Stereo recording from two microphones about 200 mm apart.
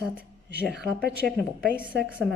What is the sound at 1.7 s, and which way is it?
Speech, 5° right (ahead or behind).